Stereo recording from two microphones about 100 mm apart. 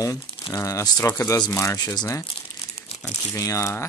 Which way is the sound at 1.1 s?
20° left (ahead or behind).